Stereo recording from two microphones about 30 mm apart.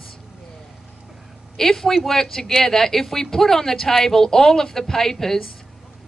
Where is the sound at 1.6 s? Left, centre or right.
Centre.